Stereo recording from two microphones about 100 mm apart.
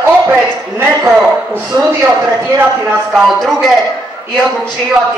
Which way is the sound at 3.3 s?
5° left (ahead or behind).